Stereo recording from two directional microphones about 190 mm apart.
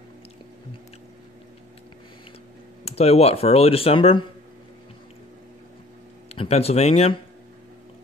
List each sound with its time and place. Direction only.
2.8 s speech: 30° left (ahead or behind)
6.2 s speech: 30° left (ahead or behind)